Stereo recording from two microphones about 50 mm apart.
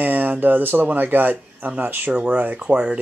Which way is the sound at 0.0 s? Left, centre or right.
Right.